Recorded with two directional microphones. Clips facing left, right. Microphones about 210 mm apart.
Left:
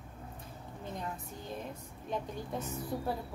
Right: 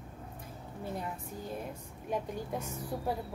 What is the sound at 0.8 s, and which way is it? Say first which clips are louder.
A woman's voice: right 2 dB; 10° right (ahead or behind).